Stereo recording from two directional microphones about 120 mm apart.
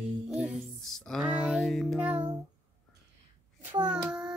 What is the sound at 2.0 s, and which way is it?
Child singing, 10° right (ahead or behind).